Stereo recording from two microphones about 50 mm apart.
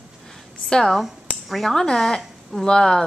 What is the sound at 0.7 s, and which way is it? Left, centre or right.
Speech, centre.